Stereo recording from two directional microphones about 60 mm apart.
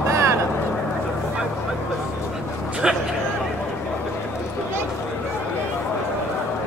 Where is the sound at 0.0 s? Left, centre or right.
Right.